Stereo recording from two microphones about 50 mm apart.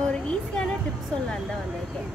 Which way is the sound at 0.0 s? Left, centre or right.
Centre.